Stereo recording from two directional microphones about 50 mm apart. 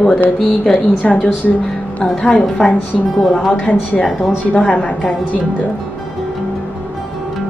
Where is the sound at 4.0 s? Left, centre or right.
Centre.